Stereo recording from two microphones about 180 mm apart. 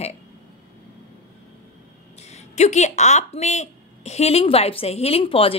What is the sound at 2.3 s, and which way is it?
A woman's voice, 40° left (ahead or behind).